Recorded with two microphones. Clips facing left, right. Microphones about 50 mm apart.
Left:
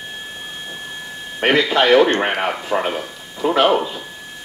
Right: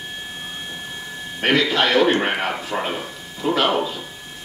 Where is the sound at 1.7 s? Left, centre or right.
Centre.